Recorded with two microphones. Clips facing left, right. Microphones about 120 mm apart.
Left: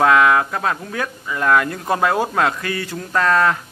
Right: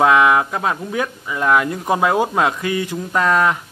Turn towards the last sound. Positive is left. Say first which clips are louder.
# even
turn(degrees=-15)  # may be behind; listen again after turning